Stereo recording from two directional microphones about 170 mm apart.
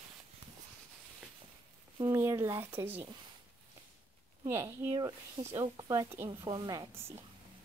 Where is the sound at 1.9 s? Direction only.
15° right (ahead or behind).